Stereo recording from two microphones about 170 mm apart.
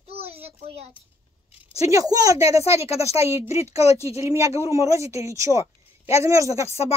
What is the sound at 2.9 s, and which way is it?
Speech, 40° left (ahead or behind).